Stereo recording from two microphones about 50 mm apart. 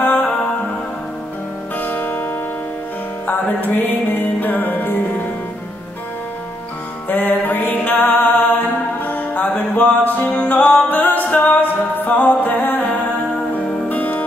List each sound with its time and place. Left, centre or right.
0.0 s music: left
1.8 s music: left
3.3 s music: left
7.1 s music: left
9.4 s music: left
10.9 s music: left
12.8 s music: left
13.8 s music: left